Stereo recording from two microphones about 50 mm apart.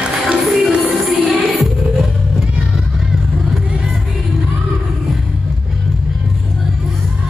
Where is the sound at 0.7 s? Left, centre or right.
Right.